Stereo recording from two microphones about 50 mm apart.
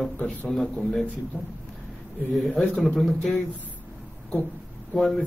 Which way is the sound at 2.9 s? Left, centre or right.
Centre.